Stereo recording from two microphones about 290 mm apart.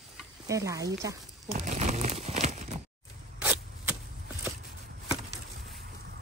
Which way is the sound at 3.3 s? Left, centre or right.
Centre.